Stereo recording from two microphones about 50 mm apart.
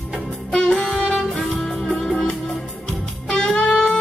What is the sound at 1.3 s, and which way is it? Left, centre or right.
Music, centre.